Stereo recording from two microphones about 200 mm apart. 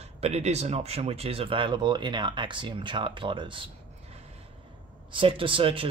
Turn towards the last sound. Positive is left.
turn(degrees=-25)  # may be behind; listen again after turning